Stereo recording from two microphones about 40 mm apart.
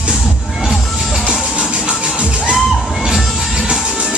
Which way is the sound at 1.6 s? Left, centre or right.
Right.